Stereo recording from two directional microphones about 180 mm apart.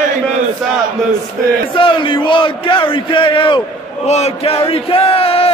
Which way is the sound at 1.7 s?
25° left (ahead or behind).